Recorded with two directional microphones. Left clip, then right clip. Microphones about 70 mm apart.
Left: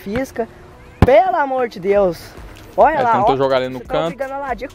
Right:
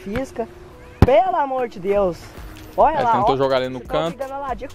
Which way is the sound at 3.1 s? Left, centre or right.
Centre.